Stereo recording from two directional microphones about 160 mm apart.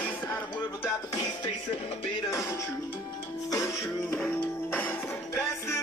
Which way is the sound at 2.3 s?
20° left (ahead or behind).